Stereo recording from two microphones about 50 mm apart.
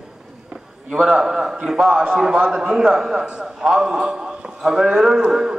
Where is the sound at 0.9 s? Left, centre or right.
Centre.